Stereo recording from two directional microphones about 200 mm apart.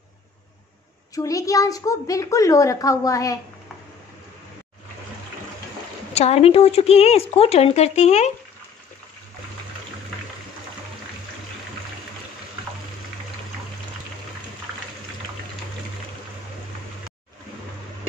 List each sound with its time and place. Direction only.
1.1 s a woman's voice: 15° left (ahead or behind)
6.1 s speech: 30° left (ahead or behind)